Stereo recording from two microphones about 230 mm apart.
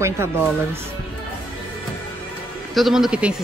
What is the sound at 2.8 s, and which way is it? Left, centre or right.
Speech, centre.